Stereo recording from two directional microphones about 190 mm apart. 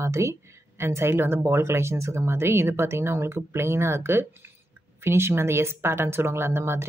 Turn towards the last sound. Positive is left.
turn(degrees=-15)  # may be behind; listen again after turning